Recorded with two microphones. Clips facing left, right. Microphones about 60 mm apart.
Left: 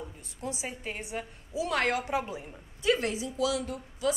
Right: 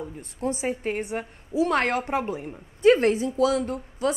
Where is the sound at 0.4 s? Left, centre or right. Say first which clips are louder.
Right 10 dB; right.